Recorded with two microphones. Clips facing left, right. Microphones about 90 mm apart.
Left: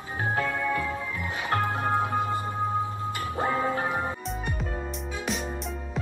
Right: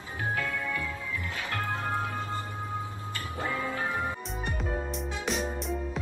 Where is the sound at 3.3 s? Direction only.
30° left (ahead or behind).